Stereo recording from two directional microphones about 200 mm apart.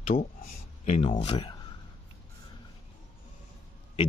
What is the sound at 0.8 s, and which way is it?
Speech, 35° left (ahead or behind).